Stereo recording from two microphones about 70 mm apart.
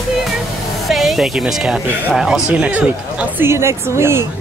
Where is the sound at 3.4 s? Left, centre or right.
Right.